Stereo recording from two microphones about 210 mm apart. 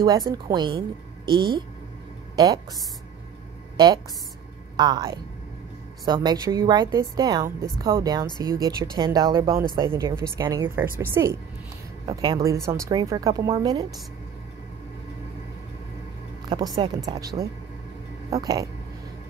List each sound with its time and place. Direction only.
0.0 s a woman's voice: 20° right (ahead or behind)
3.7 s a woman's voice: 20° right (ahead or behind)
16.4 s a woman's voice: 20° right (ahead or behind)
18.3 s speech: 15° right (ahead or behind)